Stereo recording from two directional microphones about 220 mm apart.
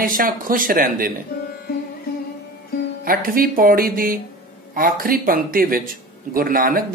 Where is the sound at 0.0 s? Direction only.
40° right (ahead or behind).